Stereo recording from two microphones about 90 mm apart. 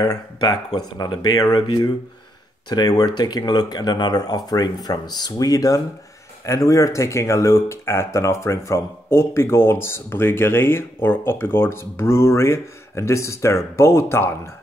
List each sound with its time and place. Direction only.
0.0 s speech: 45° left (ahead or behind)
2.7 s speech: 45° left (ahead or behind); by 14.5 s 30° left (ahead or behind)